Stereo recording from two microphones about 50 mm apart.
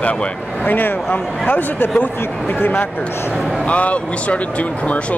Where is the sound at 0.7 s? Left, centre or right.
Left.